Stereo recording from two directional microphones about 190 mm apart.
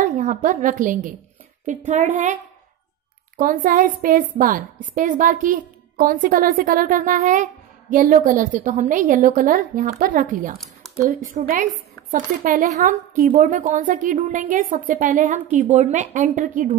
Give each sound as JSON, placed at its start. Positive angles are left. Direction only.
{"t": 0.0, "sound": "a woman's voice", "side_deg": -45}
{"t": 3.3, "sound": "a woman's voice", "side_deg": -45}